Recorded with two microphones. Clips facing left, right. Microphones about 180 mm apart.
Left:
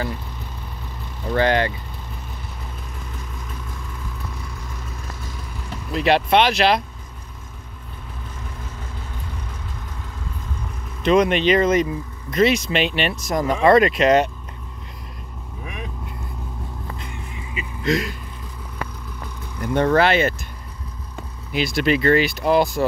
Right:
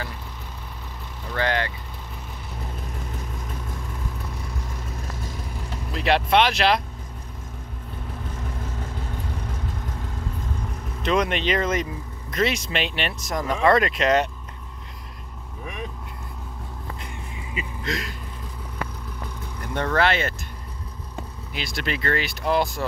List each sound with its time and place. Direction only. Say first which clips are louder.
1.3 s speech: left 6 dB; 20° left (ahead or behind)
5.9 s speech: left 3 dB; 5° left (ahead or behind)
8.4 s vehicle: right 2 dB; 45° right (ahead or behind)
11.1 s speech: left 6 dB; 5° left (ahead or behind)
15.6 s vehicle: even; 5° left (ahead or behind)
17.8 s speech: left 10 dB; 5° left (ahead or behind)
19.7 s speech: left 6 dB; 10° left (ahead or behind)
21.5 s speech: left 10 dB; 10° left (ahead or behind)